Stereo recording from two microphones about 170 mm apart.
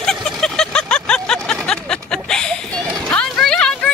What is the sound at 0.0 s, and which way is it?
Vehicle, 5° left (ahead or behind).